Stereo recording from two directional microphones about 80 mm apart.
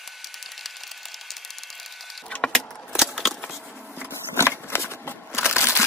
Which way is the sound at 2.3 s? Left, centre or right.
Centre.